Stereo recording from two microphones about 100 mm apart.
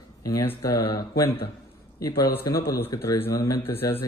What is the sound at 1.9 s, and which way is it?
A man's voice, 35° left (ahead or behind).